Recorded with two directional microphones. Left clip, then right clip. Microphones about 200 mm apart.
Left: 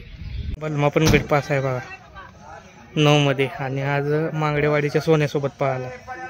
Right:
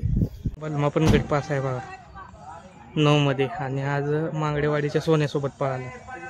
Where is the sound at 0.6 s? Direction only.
5° left (ahead or behind).